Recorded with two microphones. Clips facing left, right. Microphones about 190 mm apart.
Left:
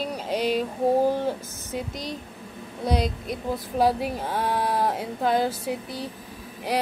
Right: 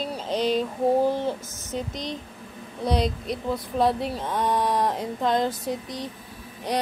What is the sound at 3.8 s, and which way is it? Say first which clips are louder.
Speech: left 1 dB; 10° left (ahead or behind).